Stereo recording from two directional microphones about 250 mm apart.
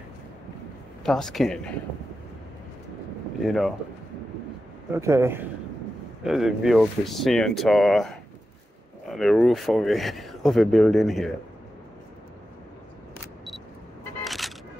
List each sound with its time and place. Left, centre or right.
1.0 s speech: centre
3.4 s speech: centre
4.9 s a man's voice: centre
14.2 s single-lens reflex camera: centre